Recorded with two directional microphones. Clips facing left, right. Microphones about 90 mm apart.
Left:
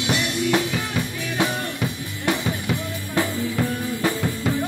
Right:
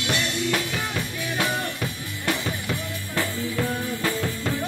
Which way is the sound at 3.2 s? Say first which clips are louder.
Left 4 dB; 20° left (ahead or behind).